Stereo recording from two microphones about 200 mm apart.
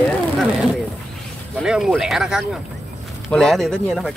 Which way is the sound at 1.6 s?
5° right (ahead or behind).